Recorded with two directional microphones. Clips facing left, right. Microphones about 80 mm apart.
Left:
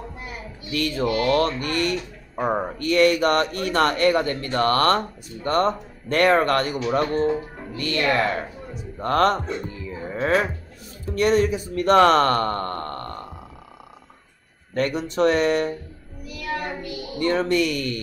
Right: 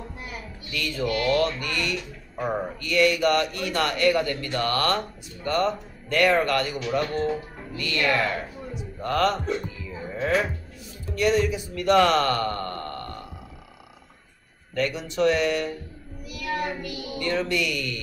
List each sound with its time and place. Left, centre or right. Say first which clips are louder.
0.7 s speech: left 4 dB; left
9.0 s speech: left 4 dB; left
11.1 s speech: left 3 dB; left
14.7 s speech: left 3 dB; left